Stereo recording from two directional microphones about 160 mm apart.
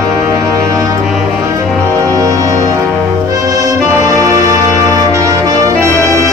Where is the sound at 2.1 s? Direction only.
20° right (ahead or behind).